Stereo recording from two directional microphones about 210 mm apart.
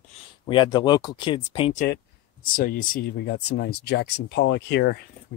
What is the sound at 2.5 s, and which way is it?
Speech, 40° left (ahead or behind).